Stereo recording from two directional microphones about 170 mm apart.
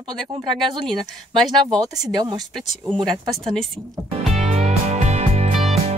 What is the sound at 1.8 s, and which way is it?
Speech, 25° right (ahead or behind).